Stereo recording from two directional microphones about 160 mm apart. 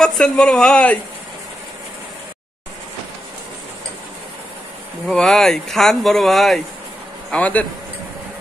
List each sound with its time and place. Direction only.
0.0 s speech: 5° left (ahead or behind)
5.0 s a man's voice: 5° left (ahead or behind)